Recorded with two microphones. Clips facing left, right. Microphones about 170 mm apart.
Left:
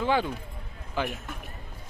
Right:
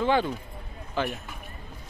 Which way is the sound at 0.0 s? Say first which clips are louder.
Right 2 dB; 5° left (ahead or behind).